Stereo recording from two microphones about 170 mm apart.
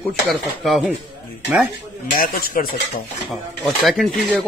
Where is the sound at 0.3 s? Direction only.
Centre (ahead or behind).